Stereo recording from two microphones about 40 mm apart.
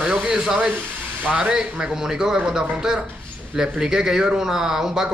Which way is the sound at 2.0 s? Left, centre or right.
Centre.